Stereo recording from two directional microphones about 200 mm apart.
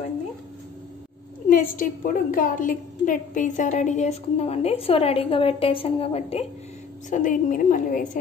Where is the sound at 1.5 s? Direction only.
45° left (ahead or behind).